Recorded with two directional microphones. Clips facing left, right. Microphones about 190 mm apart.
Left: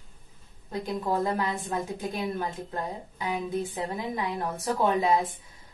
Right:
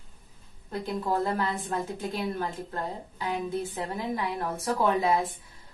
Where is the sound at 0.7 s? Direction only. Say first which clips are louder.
Even; 15° left (ahead or behind).